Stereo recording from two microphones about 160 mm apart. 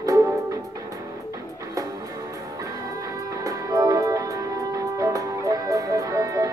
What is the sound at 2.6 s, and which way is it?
Music, 20° right (ahead or behind).